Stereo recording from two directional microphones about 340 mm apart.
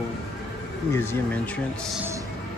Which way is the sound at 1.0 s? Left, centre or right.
Centre.